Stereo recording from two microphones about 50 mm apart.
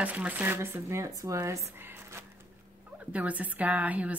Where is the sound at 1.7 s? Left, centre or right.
Right.